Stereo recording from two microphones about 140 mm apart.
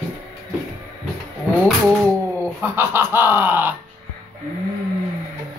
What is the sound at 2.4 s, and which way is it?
Speech, 20° right (ahead or behind).